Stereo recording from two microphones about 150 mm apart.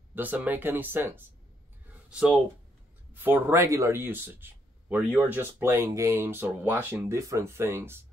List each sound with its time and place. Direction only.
0.1 s speech: 10° right (ahead or behind)